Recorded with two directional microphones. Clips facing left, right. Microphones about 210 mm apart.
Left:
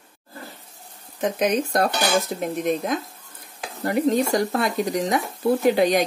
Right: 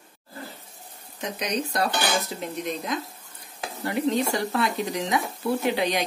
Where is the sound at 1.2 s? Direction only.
50° left (ahead or behind).